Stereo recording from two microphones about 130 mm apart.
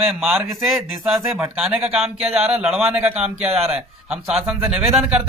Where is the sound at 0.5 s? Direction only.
Centre (ahead or behind).